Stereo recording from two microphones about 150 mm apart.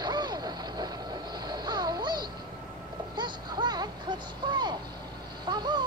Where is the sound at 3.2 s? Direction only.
30° right (ahead or behind).